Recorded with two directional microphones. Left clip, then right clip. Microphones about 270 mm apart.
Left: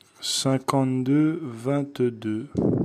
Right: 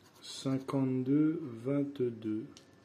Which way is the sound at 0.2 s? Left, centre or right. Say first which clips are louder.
Left 13 dB; left.